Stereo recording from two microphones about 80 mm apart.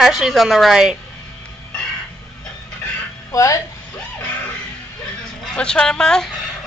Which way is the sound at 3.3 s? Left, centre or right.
Left.